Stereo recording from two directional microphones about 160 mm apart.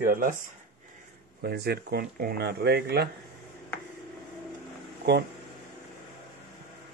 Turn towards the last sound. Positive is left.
turn(degrees=-90)